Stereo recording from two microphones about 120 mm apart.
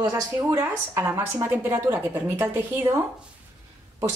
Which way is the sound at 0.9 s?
25° right (ahead or behind).